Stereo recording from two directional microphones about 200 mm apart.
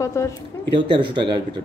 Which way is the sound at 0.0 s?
15° left (ahead or behind).